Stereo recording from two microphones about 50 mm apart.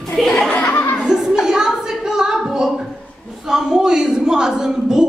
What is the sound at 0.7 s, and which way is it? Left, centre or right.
Chuckle, left.